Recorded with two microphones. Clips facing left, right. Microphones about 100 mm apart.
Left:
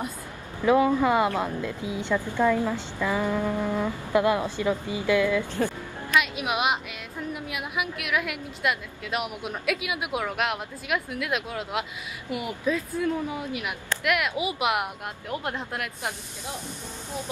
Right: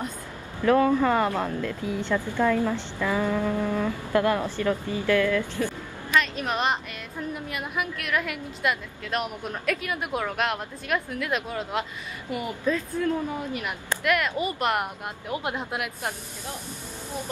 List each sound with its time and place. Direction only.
0.7 s a woman's voice: 15° left (ahead or behind); by 16.2 s centre (ahead or behind)